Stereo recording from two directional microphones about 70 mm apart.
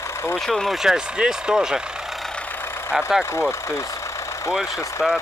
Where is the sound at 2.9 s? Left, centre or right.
Centre.